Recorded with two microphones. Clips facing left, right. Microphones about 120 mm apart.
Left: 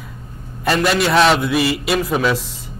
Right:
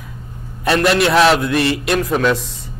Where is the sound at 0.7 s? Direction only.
Centre (ahead or behind).